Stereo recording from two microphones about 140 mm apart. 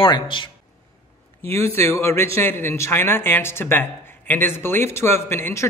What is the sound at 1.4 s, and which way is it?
A man's voice, 20° left (ahead or behind).